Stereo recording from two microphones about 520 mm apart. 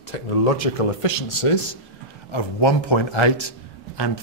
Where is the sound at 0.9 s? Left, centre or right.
Left.